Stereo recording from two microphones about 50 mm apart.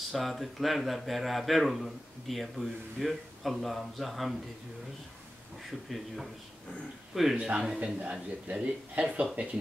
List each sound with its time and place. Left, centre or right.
0.1 s speech: centre
5.7 s speech: centre
7.3 s speech: right